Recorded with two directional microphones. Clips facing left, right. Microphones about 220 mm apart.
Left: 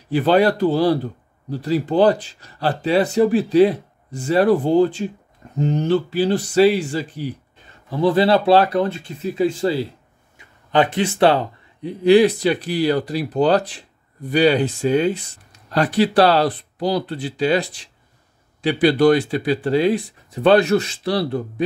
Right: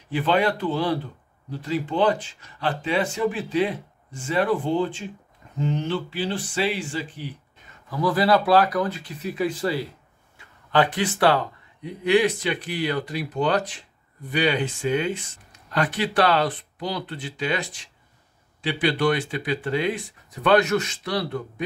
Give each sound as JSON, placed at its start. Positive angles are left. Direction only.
{"t": 0.1, "sound": "speech", "side_deg": 35}